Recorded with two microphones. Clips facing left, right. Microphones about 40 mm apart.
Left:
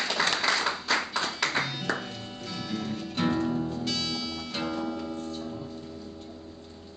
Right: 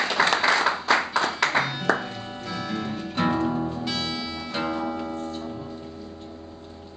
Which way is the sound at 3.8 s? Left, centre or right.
Centre.